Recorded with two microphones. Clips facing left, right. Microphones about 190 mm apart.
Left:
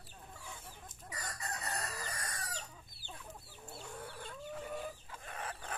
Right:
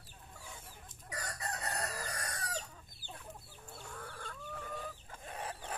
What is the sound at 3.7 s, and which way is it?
Chicken, 20° left (ahead or behind).